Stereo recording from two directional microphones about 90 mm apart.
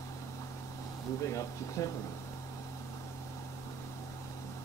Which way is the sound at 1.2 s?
35° left (ahead or behind).